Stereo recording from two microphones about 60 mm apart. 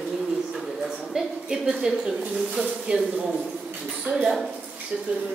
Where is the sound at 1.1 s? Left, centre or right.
Centre.